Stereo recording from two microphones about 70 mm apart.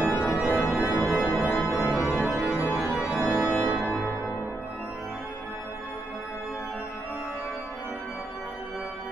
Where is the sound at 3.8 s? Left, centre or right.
Centre.